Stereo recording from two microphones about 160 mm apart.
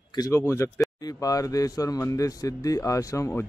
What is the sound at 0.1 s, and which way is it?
Speech, 20° left (ahead or behind).